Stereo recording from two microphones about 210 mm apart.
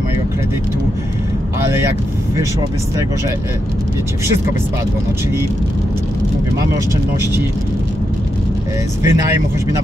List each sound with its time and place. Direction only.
9.0 s speech: 15° right (ahead or behind)